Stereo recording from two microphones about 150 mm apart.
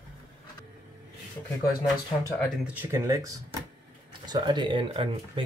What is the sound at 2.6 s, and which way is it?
Speech, 10° right (ahead or behind).